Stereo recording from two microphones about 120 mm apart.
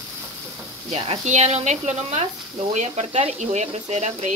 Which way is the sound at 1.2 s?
70° right (ahead or behind).